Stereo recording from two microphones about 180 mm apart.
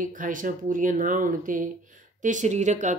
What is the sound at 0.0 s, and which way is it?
Speech, 45° right (ahead or behind).